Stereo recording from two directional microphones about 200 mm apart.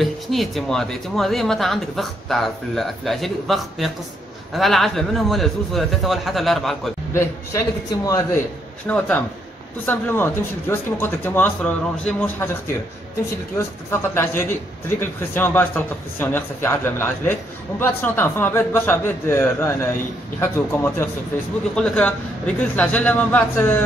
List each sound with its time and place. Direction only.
0.0 s speech: centre (ahead or behind)
7.2 s a man's voice: 15° left (ahead or behind)
8.8 s a man's voice: 10° left (ahead or behind)
13.6 s a man's voice: 10° left (ahead or behind)